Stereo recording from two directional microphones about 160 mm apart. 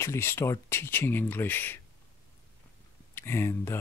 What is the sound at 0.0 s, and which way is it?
Speech, 15° left (ahead or behind).